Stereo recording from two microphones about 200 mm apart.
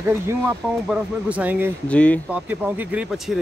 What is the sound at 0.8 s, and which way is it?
Speech, 5° right (ahead or behind).